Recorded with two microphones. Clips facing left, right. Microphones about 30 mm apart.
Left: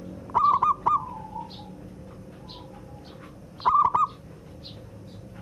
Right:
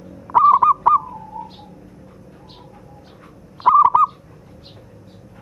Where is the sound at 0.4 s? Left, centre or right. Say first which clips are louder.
Right 8 dB; right.